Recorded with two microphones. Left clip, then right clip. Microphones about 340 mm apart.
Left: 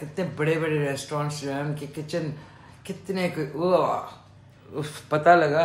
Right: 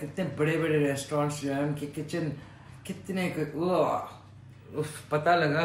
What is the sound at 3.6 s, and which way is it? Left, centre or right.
Speech, centre.